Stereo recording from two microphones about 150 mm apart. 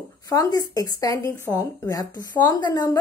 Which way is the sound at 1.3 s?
15° left (ahead or behind).